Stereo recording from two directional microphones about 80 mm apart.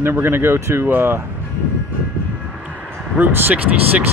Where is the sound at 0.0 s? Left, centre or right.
Right.